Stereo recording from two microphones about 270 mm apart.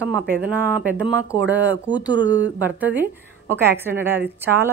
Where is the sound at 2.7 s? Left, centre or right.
Centre.